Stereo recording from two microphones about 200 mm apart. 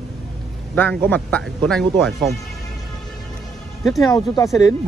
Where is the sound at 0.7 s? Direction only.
10° left (ahead or behind).